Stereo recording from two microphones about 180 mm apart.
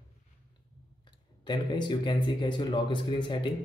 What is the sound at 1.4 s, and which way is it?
Speech, 25° left (ahead or behind).